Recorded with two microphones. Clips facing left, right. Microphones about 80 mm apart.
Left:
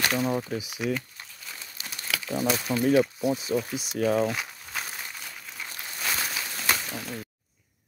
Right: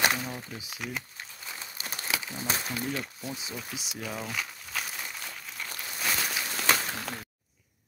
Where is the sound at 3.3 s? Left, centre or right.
Left.